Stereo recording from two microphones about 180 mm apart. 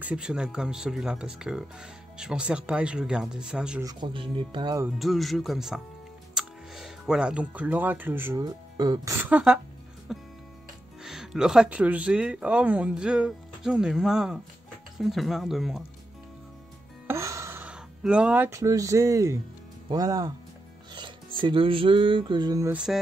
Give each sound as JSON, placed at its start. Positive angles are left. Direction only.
{"t": 0.0, "sound": "speech", "side_deg": -5}
{"t": 3.8, "sound": "speech", "side_deg": -25}
{"t": 4.9, "sound": "speech", "side_deg": 0}
{"t": 10.1, "sound": "music", "side_deg": 0}
{"t": 11.0, "sound": "speech", "side_deg": -5}
{"t": 17.1, "sound": "a sound", "side_deg": -15}
{"t": 19.9, "sound": "speech", "side_deg": -20}
{"t": 20.9, "sound": "music", "side_deg": -25}
{"t": 22.7, "sound": "speech", "side_deg": -5}